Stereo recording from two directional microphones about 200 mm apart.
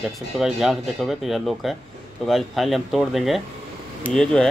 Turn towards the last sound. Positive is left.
turn(degrees=5)  # may be behind; listen again after turning